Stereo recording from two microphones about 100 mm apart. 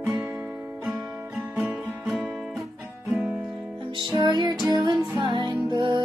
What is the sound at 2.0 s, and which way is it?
Music, centre (ahead or behind).